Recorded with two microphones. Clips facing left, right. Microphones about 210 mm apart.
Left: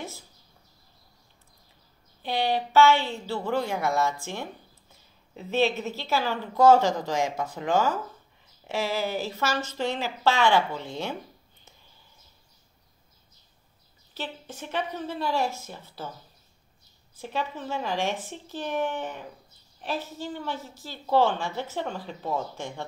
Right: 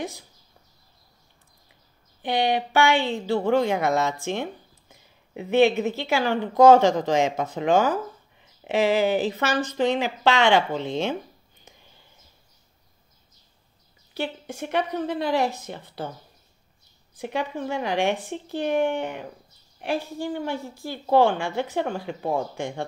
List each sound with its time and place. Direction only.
2.2 s speech: 15° right (ahead or behind)
11.6 s whispering: 15° right (ahead or behind)
14.1 s a woman's voice: 15° right (ahead or behind)
14.6 s speech: 65° right (ahead or behind)
15.2 s speech: 15° right (ahead or behind)
17.2 s speech: 15° right (ahead or behind)